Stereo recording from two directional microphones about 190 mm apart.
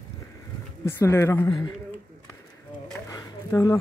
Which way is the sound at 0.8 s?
15° left (ahead or behind).